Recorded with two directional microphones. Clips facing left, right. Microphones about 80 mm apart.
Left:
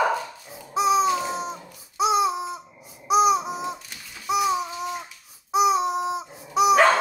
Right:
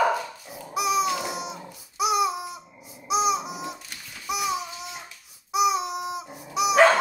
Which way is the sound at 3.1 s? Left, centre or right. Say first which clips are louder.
Left 5 dB; left.